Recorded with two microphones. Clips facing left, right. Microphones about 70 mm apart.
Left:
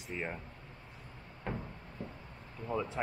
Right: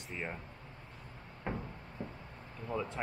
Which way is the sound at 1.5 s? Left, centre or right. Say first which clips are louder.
Right 1 dB; centre.